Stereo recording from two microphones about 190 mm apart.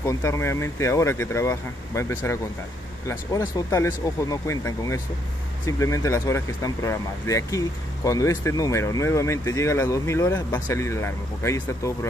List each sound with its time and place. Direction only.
0.0 s speech: 15° left (ahead or behind)